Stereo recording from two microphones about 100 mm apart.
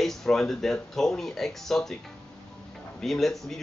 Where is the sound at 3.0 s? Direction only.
5° left (ahead or behind).